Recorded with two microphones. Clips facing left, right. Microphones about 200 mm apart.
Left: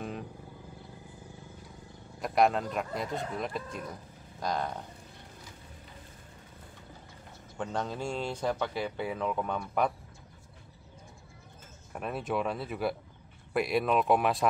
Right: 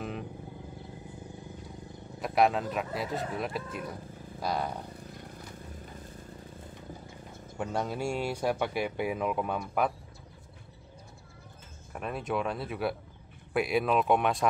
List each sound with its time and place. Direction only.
2.1 s speech: centre (ahead or behind)
7.5 s speech: 10° right (ahead or behind)
11.9 s speech: centre (ahead or behind)